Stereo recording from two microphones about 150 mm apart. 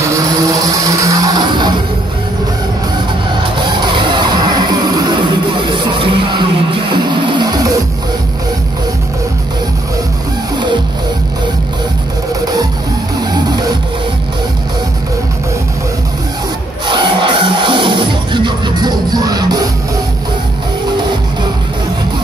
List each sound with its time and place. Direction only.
0.0 s music: 20° right (ahead or behind)
3.5 s a sound: 30° right (ahead or behind)
16.8 s music: 30° right (ahead or behind)